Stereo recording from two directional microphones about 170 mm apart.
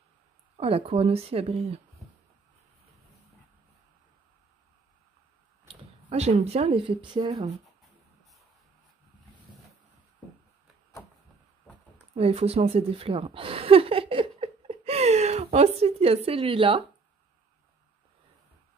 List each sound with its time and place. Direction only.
0.6 s speech: 35° right (ahead or behind)
5.7 s speech: 35° right (ahead or behind)
12.1 s speech: 35° right (ahead or behind)